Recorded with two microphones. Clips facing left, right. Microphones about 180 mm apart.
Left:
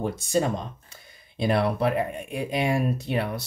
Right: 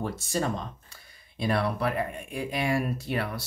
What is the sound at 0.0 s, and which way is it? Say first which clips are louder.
Speech: left 5 dB; 15° left (ahead or behind).